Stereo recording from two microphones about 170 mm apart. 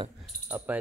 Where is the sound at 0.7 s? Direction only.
10° right (ahead or behind).